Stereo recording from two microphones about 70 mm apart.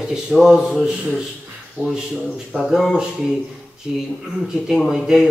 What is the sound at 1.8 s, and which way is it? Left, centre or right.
Speech, right.